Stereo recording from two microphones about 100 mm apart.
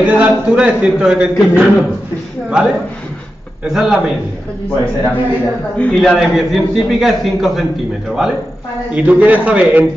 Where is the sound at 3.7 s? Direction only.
5° right (ahead or behind).